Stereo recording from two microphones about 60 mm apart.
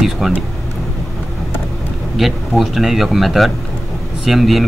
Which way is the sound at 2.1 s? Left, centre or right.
Centre.